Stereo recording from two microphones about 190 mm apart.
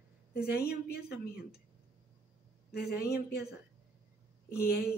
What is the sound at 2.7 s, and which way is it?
A woman's voice, 55° left (ahead or behind).